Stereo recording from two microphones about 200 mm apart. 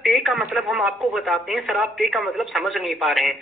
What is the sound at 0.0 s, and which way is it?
Speech, centre (ahead or behind).